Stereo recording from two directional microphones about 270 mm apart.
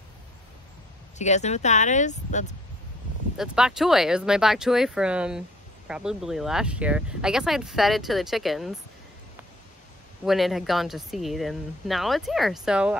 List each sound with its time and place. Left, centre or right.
1.1 s speech: left
3.3 s speech: centre
10.2 s speech: centre